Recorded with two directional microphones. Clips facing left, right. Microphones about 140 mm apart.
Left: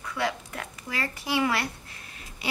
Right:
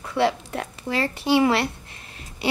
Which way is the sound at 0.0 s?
30° right (ahead or behind).